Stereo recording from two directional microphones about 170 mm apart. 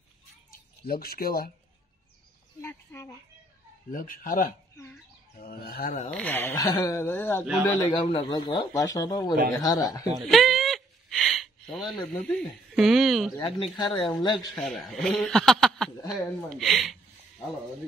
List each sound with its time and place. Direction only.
0.5 s speech: 65° left (ahead or behind)
2.6 s a sound: 15° left (ahead or behind)
3.9 s speech: 55° left (ahead or behind)
6.0 s speech: 10° left (ahead or behind)
7.6 s speech: 30° left (ahead or behind)
10.2 s a sound: centre (ahead or behind)
13.4 s speech: 30° left (ahead or behind)
14.5 s a man's voice: centre (ahead or behind)